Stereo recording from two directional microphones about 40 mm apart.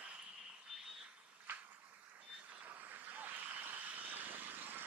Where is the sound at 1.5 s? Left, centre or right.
Right.